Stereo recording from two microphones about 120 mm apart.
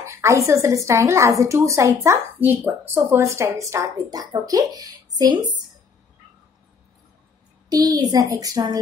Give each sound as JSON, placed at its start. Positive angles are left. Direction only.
{"t": 0.0, "sound": "a woman's voice", "side_deg": -25}
{"t": 7.7, "sound": "a woman's voice", "side_deg": -35}